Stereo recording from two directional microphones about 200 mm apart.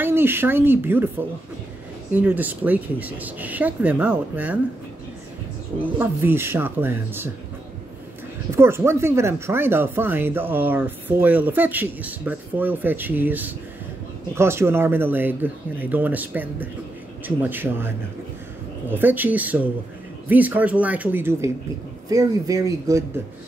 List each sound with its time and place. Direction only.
0.0 s speech: 10° right (ahead or behind)
5.8 s speech: 10° right (ahead or behind)
8.5 s speech: 10° right (ahead or behind)